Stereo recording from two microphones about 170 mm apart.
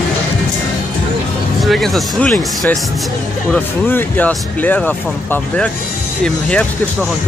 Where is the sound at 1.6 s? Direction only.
Centre (ahead or behind).